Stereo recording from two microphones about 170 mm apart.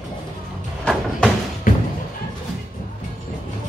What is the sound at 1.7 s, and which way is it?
Music, 50° left (ahead or behind).